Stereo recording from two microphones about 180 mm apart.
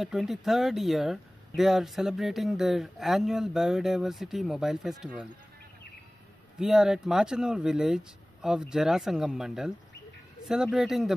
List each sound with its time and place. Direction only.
0.0 s speech: centre (ahead or behind)
6.6 s speech: 5° right (ahead or behind)